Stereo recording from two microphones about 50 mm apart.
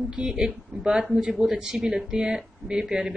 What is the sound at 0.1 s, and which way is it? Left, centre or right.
A woman's voice, centre.